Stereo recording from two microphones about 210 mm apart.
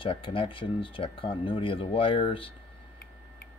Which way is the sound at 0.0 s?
25° left (ahead or behind).